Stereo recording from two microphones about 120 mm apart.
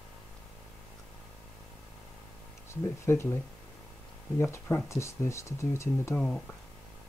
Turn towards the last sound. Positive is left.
turn(degrees=10)  # may be behind; listen again after turning